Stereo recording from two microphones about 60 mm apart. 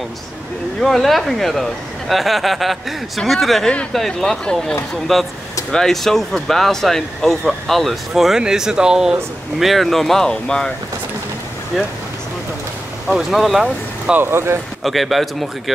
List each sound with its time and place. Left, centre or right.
0.7 s speech: centre
13.1 s speech: centre
14.1 s speech: right
14.8 s speech: centre